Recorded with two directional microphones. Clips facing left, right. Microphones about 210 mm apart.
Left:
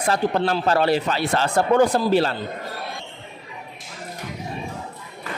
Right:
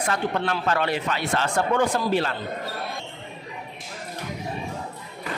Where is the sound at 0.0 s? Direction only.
35° left (ahead or behind).